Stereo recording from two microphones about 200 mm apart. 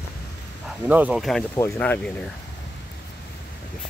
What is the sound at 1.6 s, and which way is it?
Speech, 10° left (ahead or behind).